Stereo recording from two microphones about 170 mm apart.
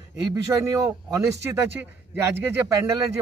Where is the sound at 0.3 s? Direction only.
20° right (ahead or behind).